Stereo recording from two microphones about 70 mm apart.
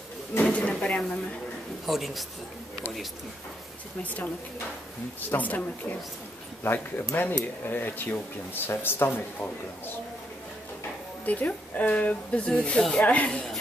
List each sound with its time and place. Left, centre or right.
0.4 s speech: centre
1.9 s a man's voice: centre
4.0 s speech: left
5.3 s speech: left
11.2 s speech: left